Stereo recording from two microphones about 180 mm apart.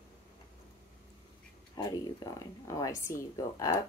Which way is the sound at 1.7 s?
20° left (ahead or behind).